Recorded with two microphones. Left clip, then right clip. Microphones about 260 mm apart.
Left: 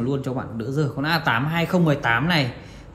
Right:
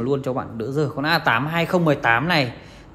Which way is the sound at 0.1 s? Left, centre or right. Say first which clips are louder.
Right 4 dB; right.